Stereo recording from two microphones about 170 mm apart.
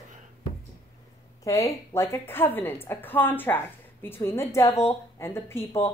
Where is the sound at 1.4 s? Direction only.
20° left (ahead or behind).